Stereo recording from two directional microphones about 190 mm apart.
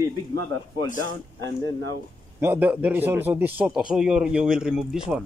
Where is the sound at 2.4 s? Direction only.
10° right (ahead or behind).